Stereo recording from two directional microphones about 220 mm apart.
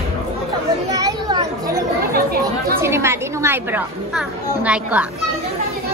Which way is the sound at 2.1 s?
45° right (ahead or behind).